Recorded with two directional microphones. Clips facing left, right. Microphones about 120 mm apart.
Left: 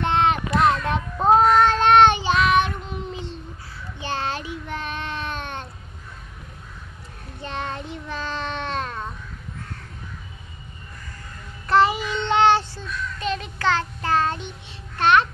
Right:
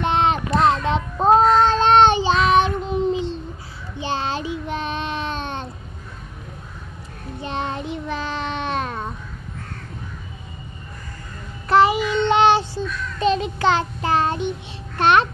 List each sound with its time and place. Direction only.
0.0 s child singing: 20° right (ahead or behind)
7.4 s child singing: 20° right (ahead or behind)
11.7 s child singing: 10° right (ahead or behind)
15.0 s babbling: 20° right (ahead or behind)